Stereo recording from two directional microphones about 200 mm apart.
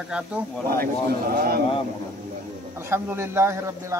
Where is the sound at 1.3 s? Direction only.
45° right (ahead or behind).